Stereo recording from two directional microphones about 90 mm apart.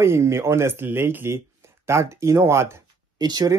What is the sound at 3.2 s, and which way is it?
Speech, 50° right (ahead or behind).